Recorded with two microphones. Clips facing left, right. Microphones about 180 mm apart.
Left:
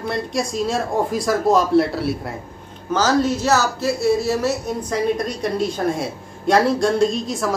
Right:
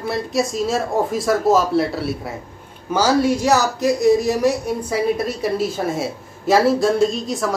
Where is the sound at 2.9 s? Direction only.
10° right (ahead or behind).